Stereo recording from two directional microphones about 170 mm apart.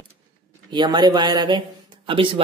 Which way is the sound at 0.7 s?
25° right (ahead or behind).